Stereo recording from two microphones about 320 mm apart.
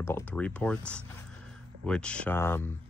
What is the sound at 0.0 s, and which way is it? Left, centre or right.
Speech, centre.